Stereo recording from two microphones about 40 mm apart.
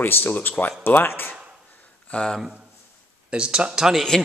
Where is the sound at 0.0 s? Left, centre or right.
Left.